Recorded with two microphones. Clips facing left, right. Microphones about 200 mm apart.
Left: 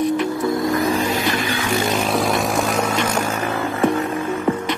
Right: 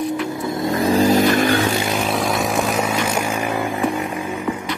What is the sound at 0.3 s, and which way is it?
Vehicle, 20° right (ahead or behind).